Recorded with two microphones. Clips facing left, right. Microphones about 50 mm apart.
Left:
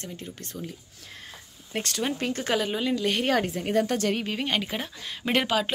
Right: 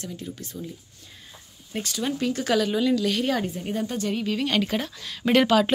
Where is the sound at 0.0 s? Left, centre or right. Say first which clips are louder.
Right 3 dB; left.